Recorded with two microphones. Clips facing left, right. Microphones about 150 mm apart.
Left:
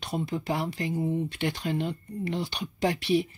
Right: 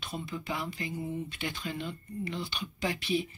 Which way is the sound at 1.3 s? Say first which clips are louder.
Left 7 dB; 70° left (ahead or behind).